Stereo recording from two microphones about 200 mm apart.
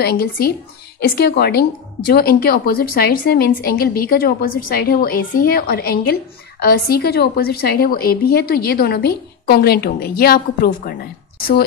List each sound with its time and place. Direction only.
0.0 s a woman's voice: 50° left (ahead or behind)